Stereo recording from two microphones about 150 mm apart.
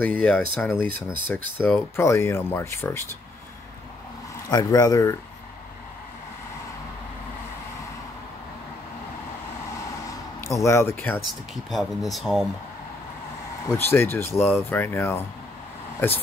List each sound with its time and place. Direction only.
0.0 s speech: 10° left (ahead or behind)
4.5 s speech: 25° left (ahead or behind)
10.0 s a sound: 20° left (ahead or behind)
11.5 s speech: centre (ahead or behind)
13.7 s speech: 15° left (ahead or behind)